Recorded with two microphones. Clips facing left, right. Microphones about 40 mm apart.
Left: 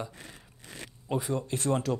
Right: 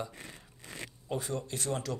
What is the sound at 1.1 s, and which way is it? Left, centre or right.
Speech, centre.